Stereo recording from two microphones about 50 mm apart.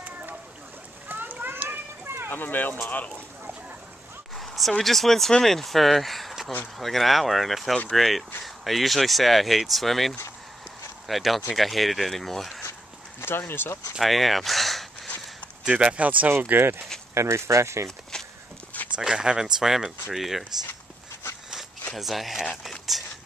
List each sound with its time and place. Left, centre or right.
0.0 s boat: right
1.0 s a sound: right
2.2 s speech: left
4.4 s speech: centre
13.2 s speech: left
13.9 s speech: centre
15.7 s speech: right
16.3 s speech: right
17.1 s speech: right
18.1 s walk: centre
18.9 s speech: centre
21.9 s speech: centre
22.6 s a sound: centre